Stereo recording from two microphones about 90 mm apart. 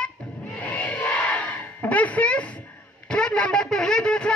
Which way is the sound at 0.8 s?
15° left (ahead or behind).